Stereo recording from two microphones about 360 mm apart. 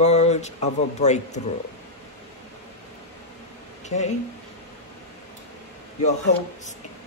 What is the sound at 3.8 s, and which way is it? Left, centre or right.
Speech, centre.